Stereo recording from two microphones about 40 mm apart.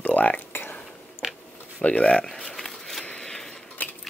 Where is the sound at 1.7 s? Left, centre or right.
Left.